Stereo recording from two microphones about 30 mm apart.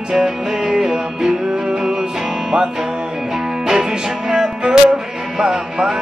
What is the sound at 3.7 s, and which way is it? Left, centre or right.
Music, right.